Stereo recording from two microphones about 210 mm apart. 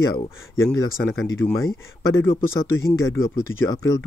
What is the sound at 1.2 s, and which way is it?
Speech, 10° left (ahead or behind).